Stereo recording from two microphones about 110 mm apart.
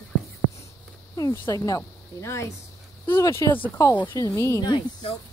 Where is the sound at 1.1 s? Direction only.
35° left (ahead or behind).